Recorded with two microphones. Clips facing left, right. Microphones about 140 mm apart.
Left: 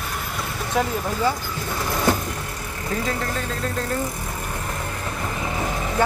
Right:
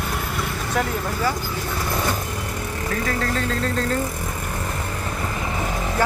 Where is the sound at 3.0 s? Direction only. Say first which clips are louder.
Right 3 dB; 20° left (ahead or behind).